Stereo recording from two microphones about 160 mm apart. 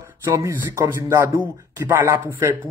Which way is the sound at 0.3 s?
15° right (ahead or behind).